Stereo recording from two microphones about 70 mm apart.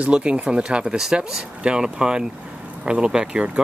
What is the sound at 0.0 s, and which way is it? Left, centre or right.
Speech, centre.